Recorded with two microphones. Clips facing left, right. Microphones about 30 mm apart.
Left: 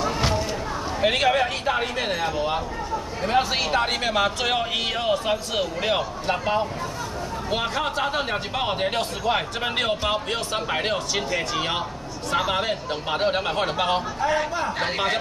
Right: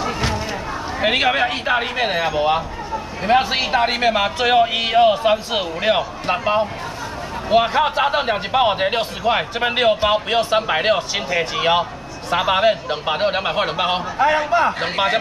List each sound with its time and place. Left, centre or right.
1.0 s speech: right